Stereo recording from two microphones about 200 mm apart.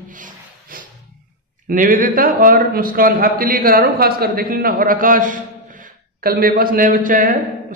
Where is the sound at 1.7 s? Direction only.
45° right (ahead or behind).